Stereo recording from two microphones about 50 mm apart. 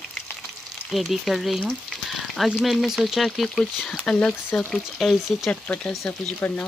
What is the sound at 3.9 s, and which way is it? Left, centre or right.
Speech, centre.